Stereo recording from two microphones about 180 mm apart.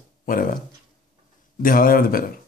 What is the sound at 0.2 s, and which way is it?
Speech, 50° left (ahead or behind).